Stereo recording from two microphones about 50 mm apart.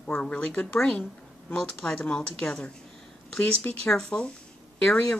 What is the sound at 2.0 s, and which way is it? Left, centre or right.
Speech, left.